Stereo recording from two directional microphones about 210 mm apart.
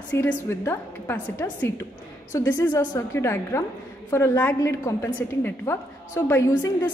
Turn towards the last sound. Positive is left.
turn(degrees=10)  # may be behind; listen again after turning